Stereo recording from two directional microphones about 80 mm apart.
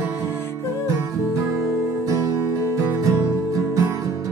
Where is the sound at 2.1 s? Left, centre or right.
Right.